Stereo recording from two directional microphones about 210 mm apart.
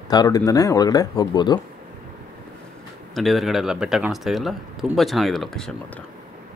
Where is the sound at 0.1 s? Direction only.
20° left (ahead or behind).